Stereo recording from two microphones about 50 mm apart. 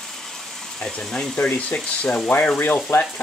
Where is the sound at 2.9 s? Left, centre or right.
Left.